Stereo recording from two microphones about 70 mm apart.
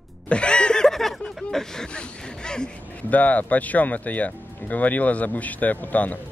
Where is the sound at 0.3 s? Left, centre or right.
Centre.